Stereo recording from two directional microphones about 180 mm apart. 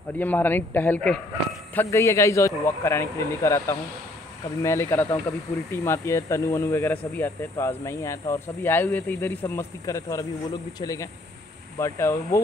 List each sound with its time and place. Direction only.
0.2 s speech: 10° left (ahead or behind)